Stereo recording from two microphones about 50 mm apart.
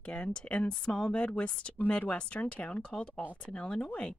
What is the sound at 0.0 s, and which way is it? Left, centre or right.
Speech, left.